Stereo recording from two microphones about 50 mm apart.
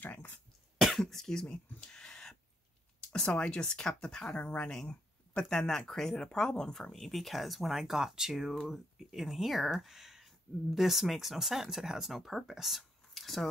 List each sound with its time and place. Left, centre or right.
0.0 s cough: left
0.7 s cough: centre
3.1 s speech: centre
4.4 s speech: left
5.4 s speech: centre